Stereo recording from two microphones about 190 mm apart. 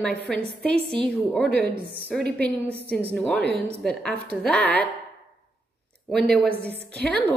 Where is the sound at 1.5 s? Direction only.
65° right (ahead or behind).